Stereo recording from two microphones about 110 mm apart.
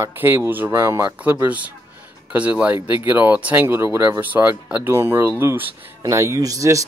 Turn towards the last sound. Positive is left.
turn(degrees=-30)  # may be behind; listen again after turning